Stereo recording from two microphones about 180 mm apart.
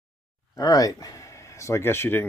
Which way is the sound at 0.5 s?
20° left (ahead or behind).